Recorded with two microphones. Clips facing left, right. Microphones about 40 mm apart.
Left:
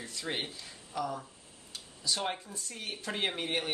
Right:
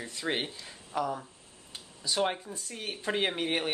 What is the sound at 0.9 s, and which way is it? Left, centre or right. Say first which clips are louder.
Speech: right 4 dB; right.